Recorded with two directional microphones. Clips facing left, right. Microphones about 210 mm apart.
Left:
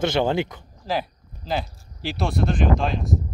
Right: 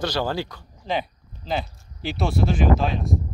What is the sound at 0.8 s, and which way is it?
Speech, centre (ahead or behind).